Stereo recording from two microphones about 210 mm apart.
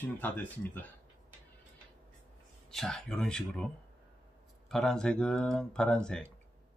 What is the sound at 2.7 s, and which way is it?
Speech, centre (ahead or behind).